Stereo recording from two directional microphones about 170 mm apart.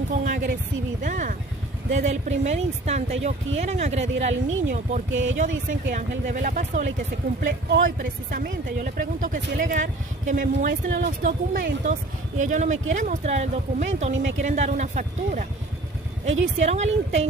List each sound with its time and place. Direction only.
0.1 s a sound: 45° right (ahead or behind)
1.0 s speech: 50° right (ahead or behind)
5.1 s speech: 90° right
5.7 s speech: 50° right (ahead or behind)
10.7 s speech: 75° right (ahead or behind)
11.8 s speech: 45° right (ahead or behind)